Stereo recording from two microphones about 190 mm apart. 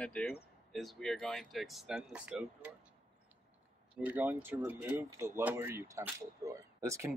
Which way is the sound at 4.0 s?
10° right (ahead or behind).